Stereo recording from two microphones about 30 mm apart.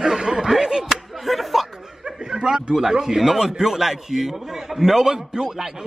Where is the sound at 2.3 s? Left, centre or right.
Right.